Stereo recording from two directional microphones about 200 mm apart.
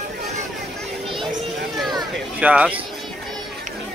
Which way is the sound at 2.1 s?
5° right (ahead or behind).